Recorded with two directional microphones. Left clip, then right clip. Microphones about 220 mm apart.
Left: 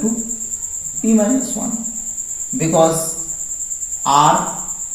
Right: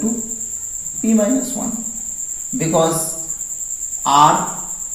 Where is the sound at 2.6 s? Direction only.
15° left (ahead or behind).